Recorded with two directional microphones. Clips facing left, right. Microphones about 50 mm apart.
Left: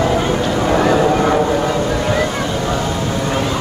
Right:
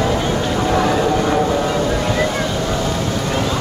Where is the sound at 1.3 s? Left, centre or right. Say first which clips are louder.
Left 2 dB; centre.